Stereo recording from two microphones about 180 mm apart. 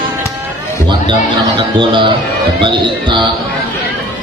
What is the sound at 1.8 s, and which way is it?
A man's voice, 25° right (ahead or behind).